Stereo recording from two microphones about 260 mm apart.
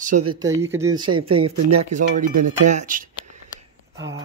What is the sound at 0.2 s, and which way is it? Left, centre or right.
Speech, right.